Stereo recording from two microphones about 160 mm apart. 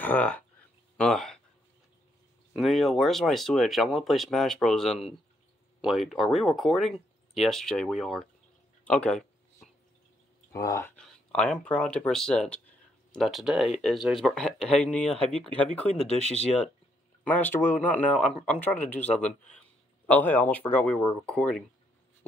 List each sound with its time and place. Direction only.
0.0 s speech: 10° left (ahead or behind)
2.5 s speech: centre (ahead or behind)
8.8 s a sound: 5° left (ahead or behind)
10.5 s speech: 20° left (ahead or behind)
11.0 s a sound: 5° left (ahead or behind)
11.6 s speech: 5° left (ahead or behind)
17.3 s speech: 10° left (ahead or behind)